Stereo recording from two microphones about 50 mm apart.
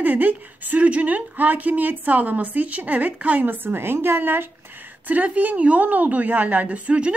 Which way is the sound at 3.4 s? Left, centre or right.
Right.